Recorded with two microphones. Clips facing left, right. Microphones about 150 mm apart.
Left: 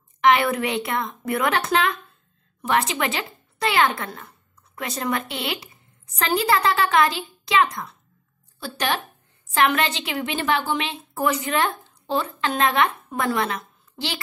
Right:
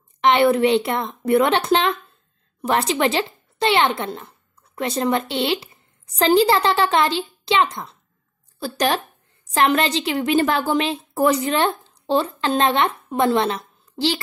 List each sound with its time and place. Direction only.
0.2 s a woman's voice: 30° right (ahead or behind)
8.7 s a woman's voice: 40° right (ahead or behind)